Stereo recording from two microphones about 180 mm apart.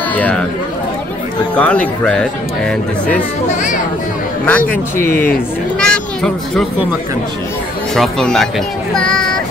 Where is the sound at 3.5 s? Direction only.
45° left (ahead or behind).